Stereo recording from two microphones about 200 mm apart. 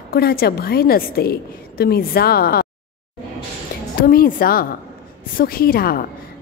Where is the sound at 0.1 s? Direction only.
50° left (ahead or behind).